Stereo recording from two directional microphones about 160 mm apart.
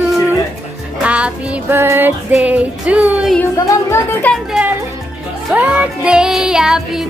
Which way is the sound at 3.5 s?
20° left (ahead or behind).